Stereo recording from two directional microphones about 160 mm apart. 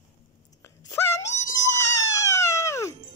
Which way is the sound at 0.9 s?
15° left (ahead or behind).